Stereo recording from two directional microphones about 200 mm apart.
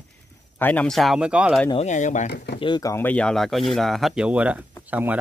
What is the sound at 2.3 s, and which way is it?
Speech, 55° left (ahead or behind).